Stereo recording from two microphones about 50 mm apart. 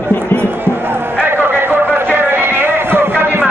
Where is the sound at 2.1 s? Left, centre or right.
Right.